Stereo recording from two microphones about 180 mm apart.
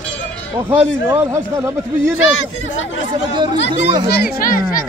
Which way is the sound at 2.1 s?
90° left.